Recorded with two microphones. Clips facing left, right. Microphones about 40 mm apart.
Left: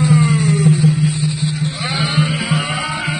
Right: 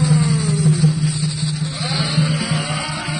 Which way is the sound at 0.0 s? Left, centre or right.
Left.